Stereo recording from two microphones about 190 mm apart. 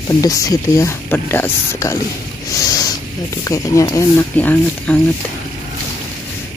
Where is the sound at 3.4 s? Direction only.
15° left (ahead or behind).